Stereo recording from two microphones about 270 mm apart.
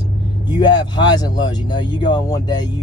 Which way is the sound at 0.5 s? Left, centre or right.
Centre.